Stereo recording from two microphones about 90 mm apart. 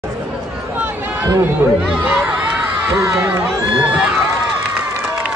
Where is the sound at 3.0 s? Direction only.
35° right (ahead or behind).